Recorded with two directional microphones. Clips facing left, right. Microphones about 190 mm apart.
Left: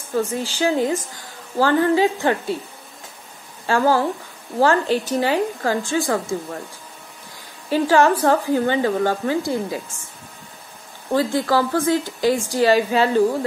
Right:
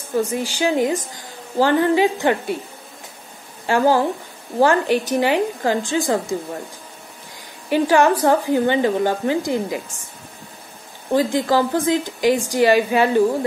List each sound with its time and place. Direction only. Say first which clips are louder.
0.1 s a woman's voice: right 1 dB; 15° right (ahead or behind)
3.6 s a woman's voice: right 1 dB; 15° right (ahead or behind)
7.7 s a woman's voice: right 1 dB; 15° right (ahead or behind)
11.1 s a woman's voice: right 1 dB; 20° right (ahead or behind)